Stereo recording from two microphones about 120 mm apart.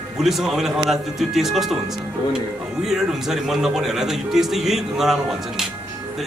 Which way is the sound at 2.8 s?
5° right (ahead or behind).